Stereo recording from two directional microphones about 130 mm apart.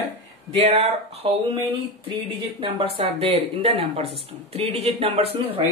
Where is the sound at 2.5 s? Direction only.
45° right (ahead or behind).